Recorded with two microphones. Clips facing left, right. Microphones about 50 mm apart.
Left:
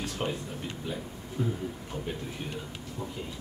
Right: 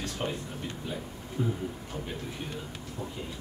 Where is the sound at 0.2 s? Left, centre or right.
Centre.